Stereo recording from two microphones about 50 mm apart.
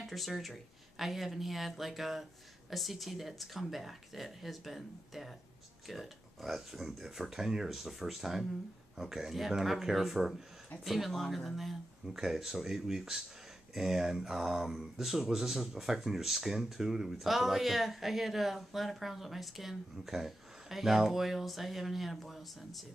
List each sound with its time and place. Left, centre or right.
0.0 s speech: centre